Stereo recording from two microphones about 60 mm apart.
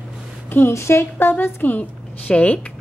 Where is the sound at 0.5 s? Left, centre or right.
Left.